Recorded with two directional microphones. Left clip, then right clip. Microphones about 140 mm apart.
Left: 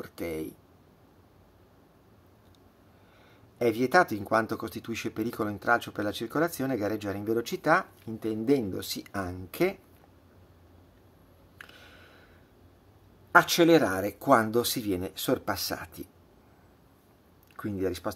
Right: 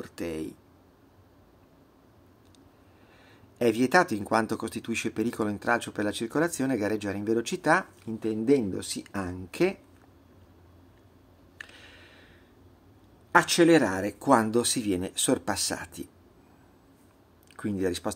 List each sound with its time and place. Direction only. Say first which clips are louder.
0.0 s speech: even; 5° right (ahead or behind)
3.5 s speech: right 1 dB; 20° right (ahead or behind)
13.3 s speech: even; 5° right (ahead or behind)
17.6 s speech: right 2 dB; 25° right (ahead or behind)